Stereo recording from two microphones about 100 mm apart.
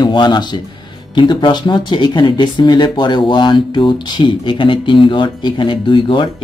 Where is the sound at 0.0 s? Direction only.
45° left (ahead or behind).